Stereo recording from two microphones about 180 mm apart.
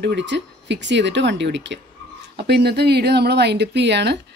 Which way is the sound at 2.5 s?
65° right (ahead or behind).